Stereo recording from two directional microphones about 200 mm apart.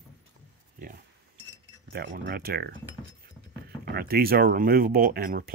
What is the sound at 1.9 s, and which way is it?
Speech, 60° right (ahead or behind).